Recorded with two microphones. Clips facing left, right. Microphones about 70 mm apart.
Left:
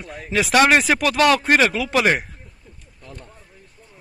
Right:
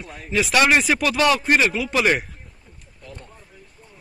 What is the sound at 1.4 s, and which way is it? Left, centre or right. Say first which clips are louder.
Speech: left 2 dB; left.